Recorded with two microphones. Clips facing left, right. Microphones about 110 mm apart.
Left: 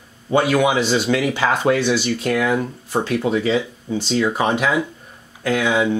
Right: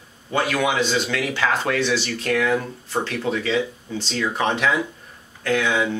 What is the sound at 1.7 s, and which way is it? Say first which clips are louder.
Speech: left 3 dB; 10° left (ahead or behind).